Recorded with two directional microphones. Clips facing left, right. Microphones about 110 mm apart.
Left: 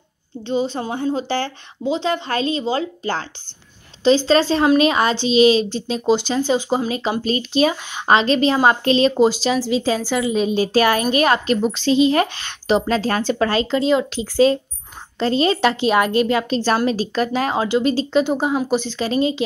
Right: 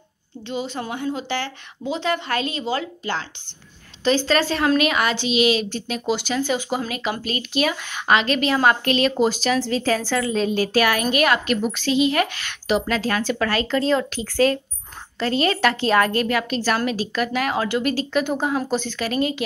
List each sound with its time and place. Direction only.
0.5 s a woman's voice: 30° left (ahead or behind)
4.3 s a woman's voice: 25° left (ahead or behind)